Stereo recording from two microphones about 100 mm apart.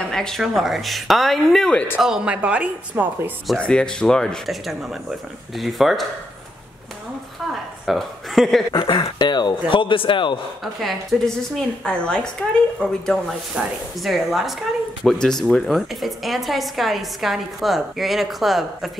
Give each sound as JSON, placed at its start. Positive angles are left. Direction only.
{"t": 0.1, "sound": "a woman's voice", "side_deg": 5}
{"t": 2.0, "sound": "speech", "side_deg": -5}
{"t": 3.5, "sound": "a woman's voice", "side_deg": 10}
{"t": 7.8, "sound": "speech", "side_deg": 0}
{"t": 8.7, "sound": "a man's voice", "side_deg": 55}
{"t": 10.6, "sound": "a woman's voice", "side_deg": 0}
{"t": 13.6, "sound": "speech", "side_deg": -10}
{"t": 14.0, "sound": "a woman's voice", "side_deg": 0}